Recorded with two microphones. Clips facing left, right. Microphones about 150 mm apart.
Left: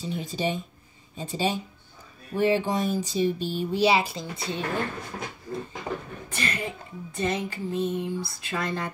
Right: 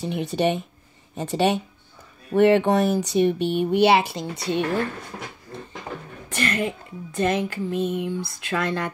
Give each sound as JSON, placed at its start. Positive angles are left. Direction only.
{"t": 0.0, "sound": "speech", "side_deg": -65}
{"t": 6.3, "sound": "speech", "side_deg": -60}